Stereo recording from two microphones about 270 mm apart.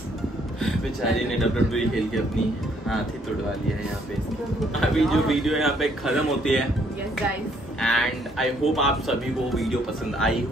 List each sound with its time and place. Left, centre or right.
1.4 s a man's voice: centre
4.6 s a man's voice: centre
7.8 s a man's voice: centre